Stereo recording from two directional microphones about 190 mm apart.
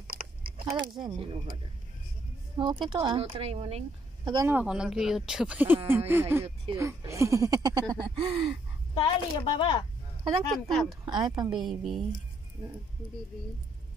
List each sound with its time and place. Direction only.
0.1 s chewing: 50° right (ahead or behind)
1.0 s speech: 25° right (ahead or behind)
2.5 s speech: 25° right (ahead or behind)
4.5 s speech: 5° right (ahead or behind)
6.4 s speech: 30° right (ahead or behind)
6.8 s speech: 15° right (ahead or behind)
8.9 s speech: 25° left (ahead or behind)
10.7 s speech: centre (ahead or behind)
11.1 s speech: 20° right (ahead or behind)
11.6 s speech: centre (ahead or behind)